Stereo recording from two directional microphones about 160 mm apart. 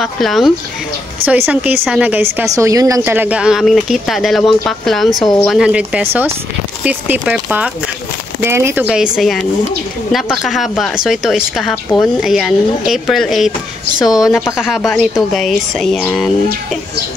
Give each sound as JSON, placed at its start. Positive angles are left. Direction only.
{"t": 0.0, "sound": "a woman's voice", "side_deg": 0}
{"t": 1.2, "sound": "a woman's voice", "side_deg": -10}
{"t": 8.8, "sound": "a woman's voice", "side_deg": -5}
{"t": 10.4, "sound": "a woman's voice", "side_deg": 0}
{"t": 13.9, "sound": "a woman's voice", "side_deg": 20}
{"t": 14.9, "sound": "a woman's voice", "side_deg": 0}